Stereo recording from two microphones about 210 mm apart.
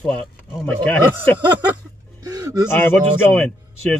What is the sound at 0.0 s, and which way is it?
Speech, centre (ahead or behind).